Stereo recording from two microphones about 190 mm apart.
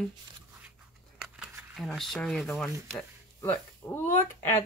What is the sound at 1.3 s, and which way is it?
Speech, centre (ahead or behind).